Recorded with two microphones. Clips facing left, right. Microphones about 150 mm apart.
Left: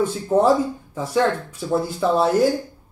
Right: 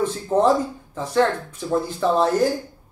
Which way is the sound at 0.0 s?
10° left (ahead or behind).